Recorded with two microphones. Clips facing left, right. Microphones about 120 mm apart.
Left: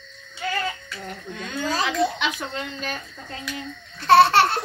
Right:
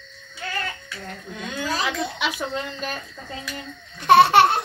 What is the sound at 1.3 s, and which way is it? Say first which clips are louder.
A woman's voice: left 1 dB; 5° right (ahead or behind).